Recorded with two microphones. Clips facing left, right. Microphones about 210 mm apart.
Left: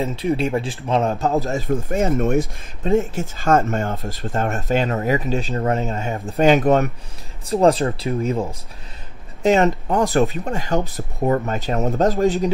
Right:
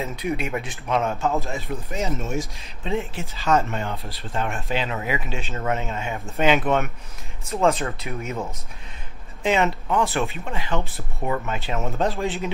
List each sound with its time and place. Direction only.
0.0 s speech: 30° left (ahead or behind)
9.4 s speech: 40° left (ahead or behind)